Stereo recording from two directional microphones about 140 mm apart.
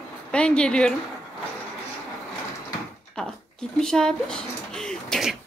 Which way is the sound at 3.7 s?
5° left (ahead or behind).